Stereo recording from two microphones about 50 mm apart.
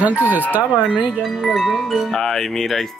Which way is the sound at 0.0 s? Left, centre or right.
Right.